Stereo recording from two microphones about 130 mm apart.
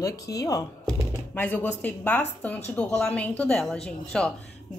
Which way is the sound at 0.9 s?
15° left (ahead or behind).